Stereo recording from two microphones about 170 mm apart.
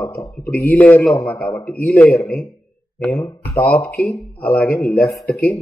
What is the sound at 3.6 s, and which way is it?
Speech, 10° left (ahead or behind).